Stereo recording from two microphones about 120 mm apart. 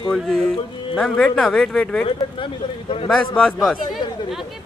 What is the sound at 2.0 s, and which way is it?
Speech, 45° left (ahead or behind).